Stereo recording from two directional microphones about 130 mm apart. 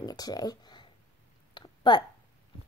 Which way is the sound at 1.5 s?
35° left (ahead or behind).